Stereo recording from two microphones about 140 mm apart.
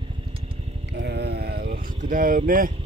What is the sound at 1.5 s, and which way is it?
Vehicle, 80° right.